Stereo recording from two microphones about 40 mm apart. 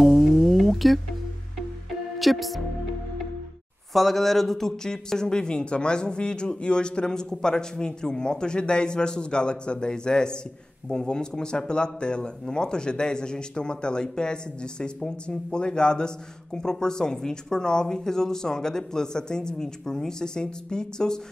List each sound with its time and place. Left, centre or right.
0.0 s a sound: centre
2.1 s speech: centre
3.9 s speech: centre